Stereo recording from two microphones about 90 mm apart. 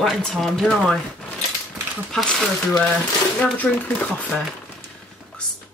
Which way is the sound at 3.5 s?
20° left (ahead or behind).